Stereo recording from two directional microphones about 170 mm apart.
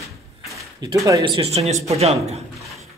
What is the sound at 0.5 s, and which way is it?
Speech, 20° right (ahead or behind).